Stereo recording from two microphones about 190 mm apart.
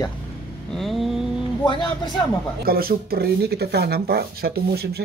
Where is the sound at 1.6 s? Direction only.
25° left (ahead or behind).